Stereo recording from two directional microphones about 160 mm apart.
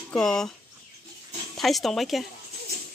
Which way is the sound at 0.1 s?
5° left (ahead or behind).